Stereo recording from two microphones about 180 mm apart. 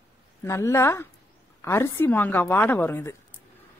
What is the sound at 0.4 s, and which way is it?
Speech, 15° left (ahead or behind).